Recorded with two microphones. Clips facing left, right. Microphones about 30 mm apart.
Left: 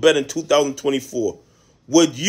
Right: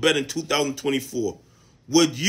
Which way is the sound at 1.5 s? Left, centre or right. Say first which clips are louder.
Left 4 dB; right.